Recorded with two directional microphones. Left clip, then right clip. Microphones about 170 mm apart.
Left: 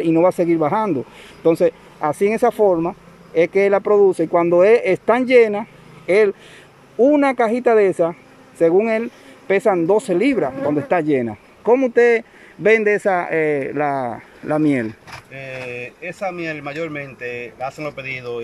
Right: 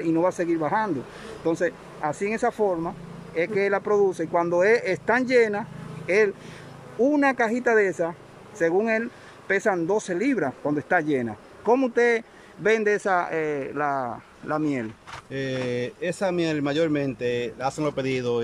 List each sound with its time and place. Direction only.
0.0 s a man's voice: 10° left (ahead or behind)
15.3 s speech: 20° right (ahead or behind)